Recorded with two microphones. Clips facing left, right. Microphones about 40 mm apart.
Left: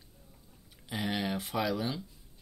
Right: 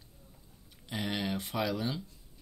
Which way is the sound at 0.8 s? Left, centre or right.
Centre.